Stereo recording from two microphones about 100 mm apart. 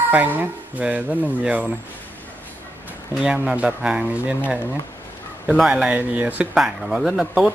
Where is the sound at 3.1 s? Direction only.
10° right (ahead or behind).